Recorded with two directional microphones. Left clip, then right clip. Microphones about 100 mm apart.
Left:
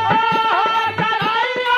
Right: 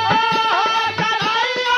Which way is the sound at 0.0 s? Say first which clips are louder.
Left 1 dB; 30° left (ahead or behind).